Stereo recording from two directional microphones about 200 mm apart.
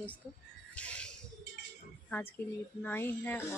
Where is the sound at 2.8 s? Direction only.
10° left (ahead or behind).